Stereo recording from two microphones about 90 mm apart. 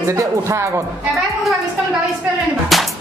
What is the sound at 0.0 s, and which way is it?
Speech, 35° right (ahead or behind).